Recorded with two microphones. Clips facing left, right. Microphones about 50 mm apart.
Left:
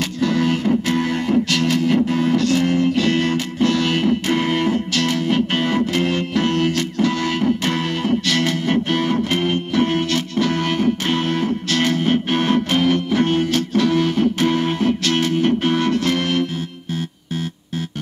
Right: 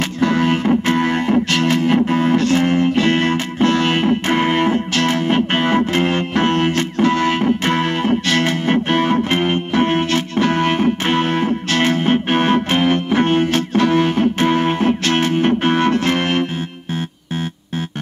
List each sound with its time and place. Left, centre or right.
0.2 s music: right